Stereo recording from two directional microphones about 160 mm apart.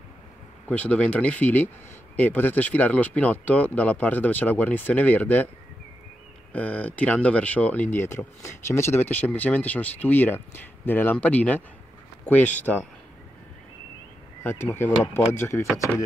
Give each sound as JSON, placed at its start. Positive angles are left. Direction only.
{"t": 0.7, "sound": "speech", "side_deg": 10}
{"t": 6.5, "sound": "speech", "side_deg": 10}
{"t": 14.4, "sound": "speech", "side_deg": 15}